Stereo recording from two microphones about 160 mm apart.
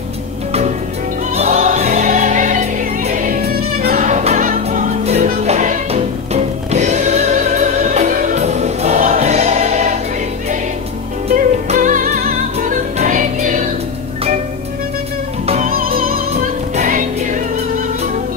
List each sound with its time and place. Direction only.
0.5 s music: 40° right (ahead or behind); by 4.0 s 65° right (ahead or behind)
4.0 s music: 45° right (ahead or behind)
11.3 s music: 55° right (ahead or behind)
15.4 s music: 45° right (ahead or behind)
16.7 s music: 55° right (ahead or behind)